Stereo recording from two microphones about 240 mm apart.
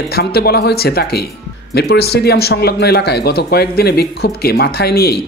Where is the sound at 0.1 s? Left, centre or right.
Left.